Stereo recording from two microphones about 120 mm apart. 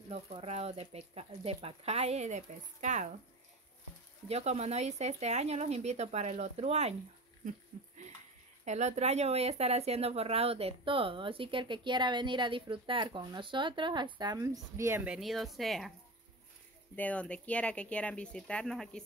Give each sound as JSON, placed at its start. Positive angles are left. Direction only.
{"t": 0.1, "sound": "speech", "side_deg": -60}
{"t": 4.3, "sound": "speech", "side_deg": -60}
{"t": 8.6, "sound": "a woman's voice", "side_deg": -75}
{"t": 14.4, "sound": "speech", "side_deg": -25}
{"t": 15.0, "sound": "speech", "side_deg": 0}
{"t": 16.9, "sound": "speech", "side_deg": 10}